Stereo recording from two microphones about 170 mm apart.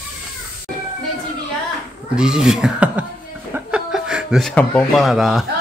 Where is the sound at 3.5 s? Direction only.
5° right (ahead or behind).